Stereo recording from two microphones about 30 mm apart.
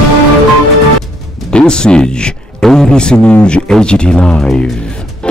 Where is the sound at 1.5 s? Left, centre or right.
Left.